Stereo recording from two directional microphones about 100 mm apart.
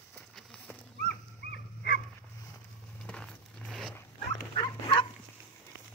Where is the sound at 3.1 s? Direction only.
10° left (ahead or behind).